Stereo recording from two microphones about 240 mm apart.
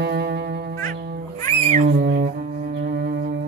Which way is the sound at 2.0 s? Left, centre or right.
Right.